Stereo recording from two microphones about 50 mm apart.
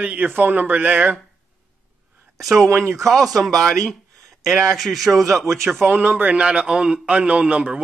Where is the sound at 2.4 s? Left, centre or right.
Centre.